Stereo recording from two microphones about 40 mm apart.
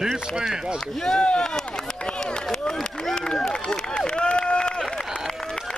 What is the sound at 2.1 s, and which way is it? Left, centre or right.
Run, left.